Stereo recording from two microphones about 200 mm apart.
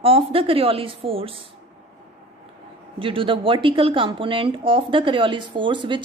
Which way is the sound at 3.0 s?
25° right (ahead or behind).